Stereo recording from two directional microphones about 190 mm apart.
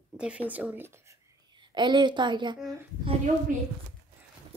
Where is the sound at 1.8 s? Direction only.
25° right (ahead or behind).